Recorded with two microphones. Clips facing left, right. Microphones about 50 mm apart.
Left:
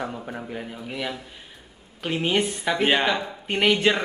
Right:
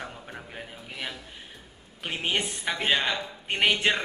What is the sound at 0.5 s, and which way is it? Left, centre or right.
A man's voice, centre.